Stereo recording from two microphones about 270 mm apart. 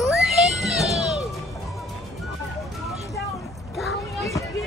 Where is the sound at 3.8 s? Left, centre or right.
Centre.